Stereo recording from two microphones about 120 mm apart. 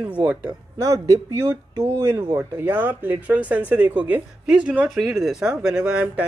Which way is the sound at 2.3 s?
20° right (ahead or behind).